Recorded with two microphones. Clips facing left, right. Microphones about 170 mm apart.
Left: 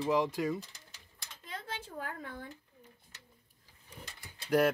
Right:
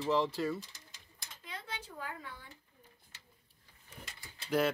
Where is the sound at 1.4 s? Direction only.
50° left (ahead or behind).